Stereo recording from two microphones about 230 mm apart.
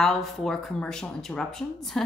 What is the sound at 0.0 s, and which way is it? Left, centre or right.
Speech, centre.